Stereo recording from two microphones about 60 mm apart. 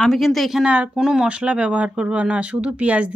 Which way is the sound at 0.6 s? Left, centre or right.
Right.